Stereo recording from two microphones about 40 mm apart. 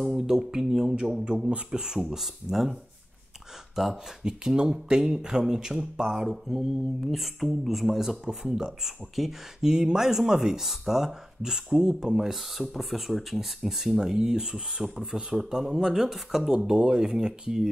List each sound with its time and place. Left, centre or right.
0.0 s speech: centre
0.4 s speech: centre
2.1 s speech: centre
3.9 s speech: centre
12.7 s speech: centre
13.9 s speech: centre
16.5 s speech: centre